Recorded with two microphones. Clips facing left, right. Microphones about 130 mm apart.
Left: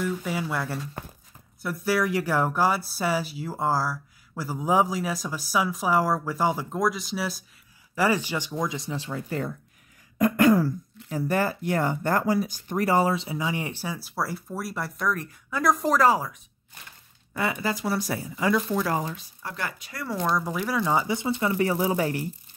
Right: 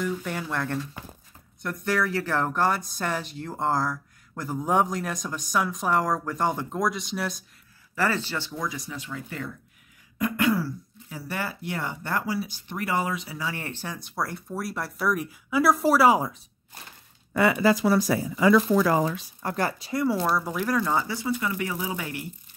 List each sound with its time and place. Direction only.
0.0 s speech: 5° left (ahead or behind)
7.9 s speech: 15° left (ahead or behind); by 16.2 s 10° right (ahead or behind)
16.2 s speech: 25° right (ahead or behind)
17.3 s speech: 90° right
18.9 s speech: 90° right
19.4 s speech: 40° right (ahead or behind)
20.1 s speech: 5° right (ahead or behind)
20.8 s speech: 15° left (ahead or behind); by 22.3 s 40° left (ahead or behind)